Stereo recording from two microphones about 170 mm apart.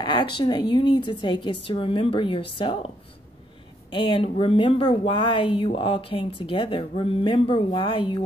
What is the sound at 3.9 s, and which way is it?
A woman's voice, 30° left (ahead or behind).